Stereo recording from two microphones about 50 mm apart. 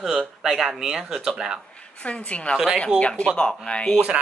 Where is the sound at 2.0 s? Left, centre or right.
Left.